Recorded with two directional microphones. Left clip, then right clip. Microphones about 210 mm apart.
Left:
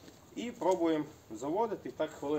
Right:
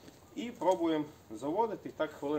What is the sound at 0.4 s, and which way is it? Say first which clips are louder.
Speech: even; centre (ahead or behind).